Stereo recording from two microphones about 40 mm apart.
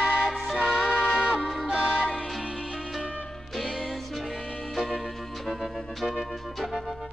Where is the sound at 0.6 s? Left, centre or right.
Right.